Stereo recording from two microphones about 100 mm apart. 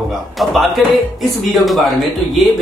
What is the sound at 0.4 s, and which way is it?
Speech, centre (ahead or behind).